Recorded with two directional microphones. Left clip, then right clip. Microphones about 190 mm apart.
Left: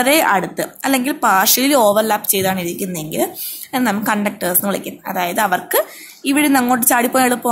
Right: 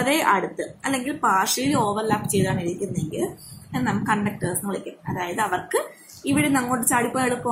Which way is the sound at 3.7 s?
60° left (ahead or behind).